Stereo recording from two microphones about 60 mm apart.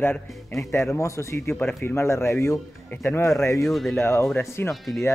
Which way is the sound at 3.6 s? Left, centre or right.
Centre.